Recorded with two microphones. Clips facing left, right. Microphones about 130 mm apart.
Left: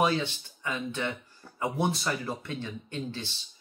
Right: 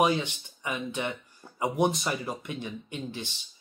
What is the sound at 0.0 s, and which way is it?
Speech, 15° right (ahead or behind).